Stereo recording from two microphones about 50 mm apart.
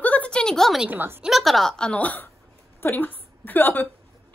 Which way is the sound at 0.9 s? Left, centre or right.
Right.